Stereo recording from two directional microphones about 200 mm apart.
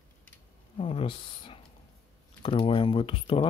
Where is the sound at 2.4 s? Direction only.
25° left (ahead or behind).